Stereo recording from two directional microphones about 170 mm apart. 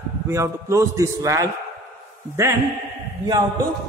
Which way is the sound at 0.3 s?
15° right (ahead or behind).